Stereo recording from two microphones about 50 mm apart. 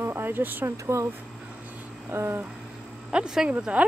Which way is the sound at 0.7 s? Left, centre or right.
Right.